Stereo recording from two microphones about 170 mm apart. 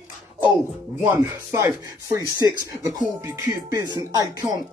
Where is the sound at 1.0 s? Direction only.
15° right (ahead or behind).